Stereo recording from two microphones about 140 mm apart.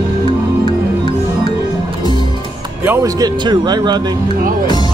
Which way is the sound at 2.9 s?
20° right (ahead or behind).